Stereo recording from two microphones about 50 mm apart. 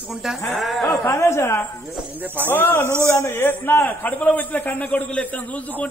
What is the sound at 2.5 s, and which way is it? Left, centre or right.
Speech, left.